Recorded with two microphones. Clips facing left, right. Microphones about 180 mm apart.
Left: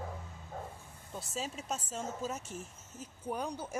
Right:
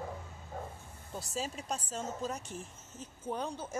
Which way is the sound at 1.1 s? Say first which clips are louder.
Right 1 dB; centre (ahead or behind).